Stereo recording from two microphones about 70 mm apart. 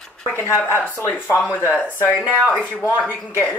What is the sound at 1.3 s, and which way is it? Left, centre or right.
Speech, left.